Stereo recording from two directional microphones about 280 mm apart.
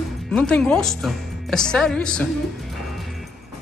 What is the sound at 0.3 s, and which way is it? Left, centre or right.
A woman's voice, centre.